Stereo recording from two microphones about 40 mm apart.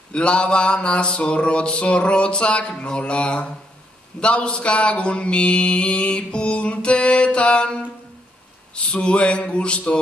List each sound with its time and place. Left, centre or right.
0.1 s mantra: left
8.7 s mantra: left